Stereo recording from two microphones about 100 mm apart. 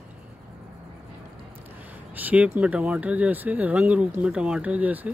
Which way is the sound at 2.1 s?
15° right (ahead or behind).